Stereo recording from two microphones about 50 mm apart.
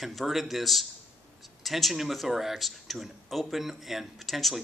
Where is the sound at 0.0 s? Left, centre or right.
Centre.